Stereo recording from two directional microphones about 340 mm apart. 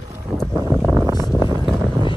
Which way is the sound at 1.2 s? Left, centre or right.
Centre.